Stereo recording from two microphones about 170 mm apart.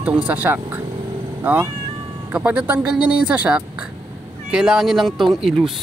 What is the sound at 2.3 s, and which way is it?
Speech, 10° right (ahead or behind).